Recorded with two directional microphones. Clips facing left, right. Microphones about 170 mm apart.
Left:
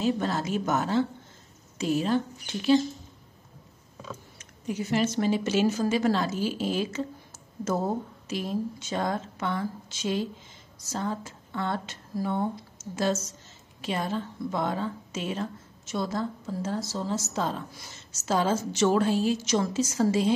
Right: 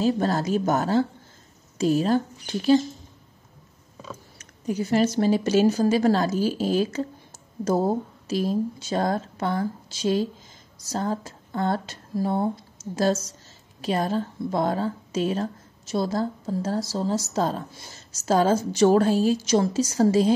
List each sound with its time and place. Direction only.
0.0 s a woman's voice: 40° right (ahead or behind)
4.4 s a woman's voice: 40° right (ahead or behind)